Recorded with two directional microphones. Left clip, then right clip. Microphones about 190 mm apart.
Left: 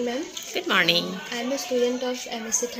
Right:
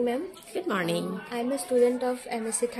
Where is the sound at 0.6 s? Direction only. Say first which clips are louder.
Left 7 dB; 15° right (ahead or behind).